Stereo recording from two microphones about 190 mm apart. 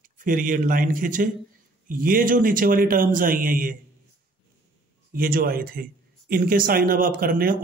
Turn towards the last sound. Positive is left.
turn(degrees=-50)  # may be behind; listen again after turning